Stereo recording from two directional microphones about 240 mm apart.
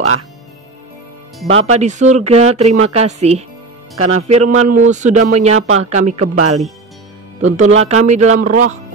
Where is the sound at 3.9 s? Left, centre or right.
Right.